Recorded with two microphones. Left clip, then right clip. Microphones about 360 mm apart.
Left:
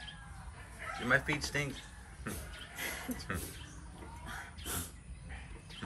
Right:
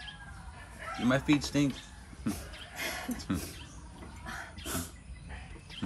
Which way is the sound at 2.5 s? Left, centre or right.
Centre.